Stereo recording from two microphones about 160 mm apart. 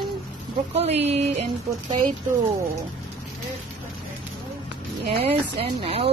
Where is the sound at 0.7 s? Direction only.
40° right (ahead or behind).